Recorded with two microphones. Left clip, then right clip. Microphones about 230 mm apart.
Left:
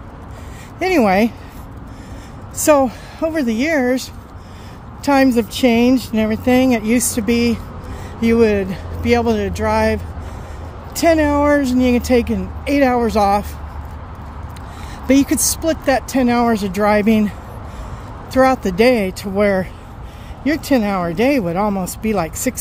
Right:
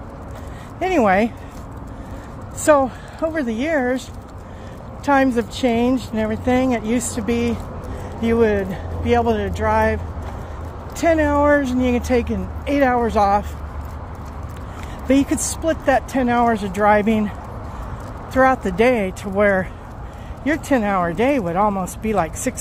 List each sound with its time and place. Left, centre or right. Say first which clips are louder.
0.7 s speech: left 2 dB; left
2.6 s speech: left 2 dB; left
5.0 s speech: left 3 dB; left
11.0 s speech: left 3 dB; left
15.0 s speech: left 3 dB; left
18.3 s speech: left 2 dB; left